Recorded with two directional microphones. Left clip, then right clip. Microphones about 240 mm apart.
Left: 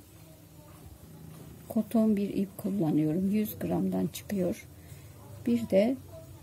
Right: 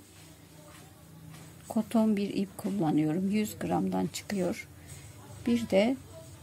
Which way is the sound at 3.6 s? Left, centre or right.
Right.